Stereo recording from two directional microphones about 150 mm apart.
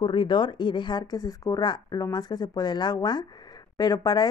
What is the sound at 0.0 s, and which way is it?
Speech, 30° left (ahead or behind).